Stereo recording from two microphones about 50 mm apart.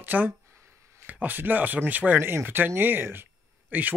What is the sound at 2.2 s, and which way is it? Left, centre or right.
Speech, right.